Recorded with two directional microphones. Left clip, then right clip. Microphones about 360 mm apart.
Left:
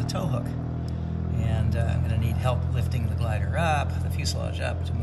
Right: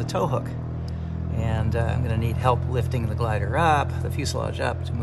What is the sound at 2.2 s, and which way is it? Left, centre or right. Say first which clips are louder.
Speech: right 8 dB; right.